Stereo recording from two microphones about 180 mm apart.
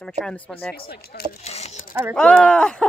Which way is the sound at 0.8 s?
60° left (ahead or behind).